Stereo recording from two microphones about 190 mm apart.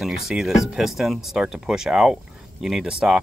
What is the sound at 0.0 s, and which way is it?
Speech, 5° right (ahead or behind).